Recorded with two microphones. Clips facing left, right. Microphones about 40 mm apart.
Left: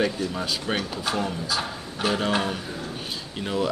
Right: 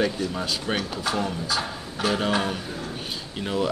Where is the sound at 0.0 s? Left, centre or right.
Centre.